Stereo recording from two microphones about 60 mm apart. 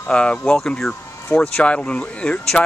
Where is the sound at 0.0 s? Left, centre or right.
Centre.